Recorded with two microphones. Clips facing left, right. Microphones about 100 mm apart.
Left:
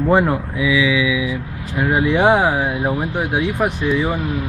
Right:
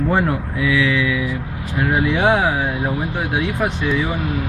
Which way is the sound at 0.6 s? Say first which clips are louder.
Left 1 dB; 5° left (ahead or behind).